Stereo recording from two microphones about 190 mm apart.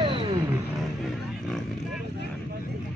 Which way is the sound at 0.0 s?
25° right (ahead or behind).